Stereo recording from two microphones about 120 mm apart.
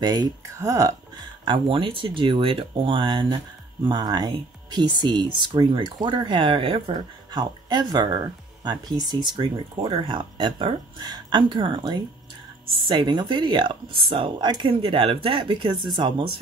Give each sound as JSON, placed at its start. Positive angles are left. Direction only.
{"t": 0.0, "sound": "speech", "side_deg": -35}
{"t": 1.4, "sound": "speech", "side_deg": -45}
{"t": 9.4, "sound": "speech", "side_deg": -50}